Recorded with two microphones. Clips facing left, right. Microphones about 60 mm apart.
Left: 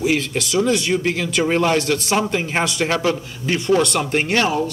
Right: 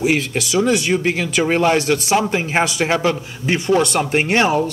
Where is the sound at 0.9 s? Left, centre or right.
Right.